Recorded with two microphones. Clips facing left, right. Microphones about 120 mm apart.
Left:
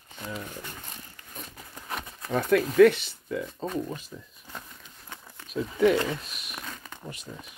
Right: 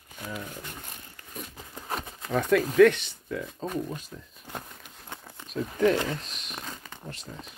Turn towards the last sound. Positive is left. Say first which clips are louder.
# even
turn(degrees=10)  # may be behind; listen again after turning